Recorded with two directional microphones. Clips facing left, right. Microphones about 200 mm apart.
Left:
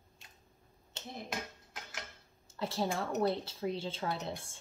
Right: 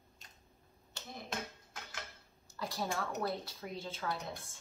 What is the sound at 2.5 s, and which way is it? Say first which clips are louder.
A woman's voice: left 4 dB; 25° left (ahead or behind).